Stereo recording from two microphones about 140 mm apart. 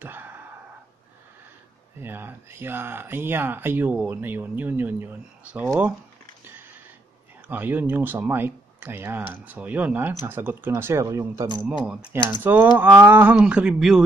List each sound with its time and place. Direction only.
0.0 s a sound: 15° right (ahead or behind)
2.0 s speech: 15° right (ahead or behind)
7.4 s speech: 15° right (ahead or behind)
11.6 s speech: 5° right (ahead or behind)